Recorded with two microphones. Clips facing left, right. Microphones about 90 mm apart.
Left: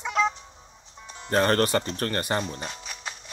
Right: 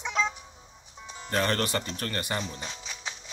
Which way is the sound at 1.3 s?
40° left (ahead or behind).